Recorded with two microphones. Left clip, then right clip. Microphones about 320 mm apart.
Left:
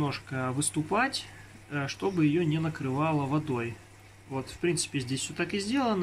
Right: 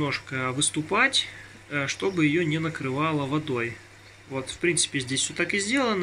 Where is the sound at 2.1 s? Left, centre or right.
Right.